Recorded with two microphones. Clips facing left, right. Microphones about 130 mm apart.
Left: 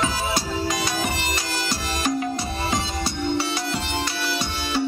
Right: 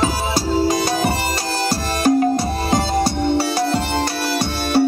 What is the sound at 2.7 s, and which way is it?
Music, 40° right (ahead or behind).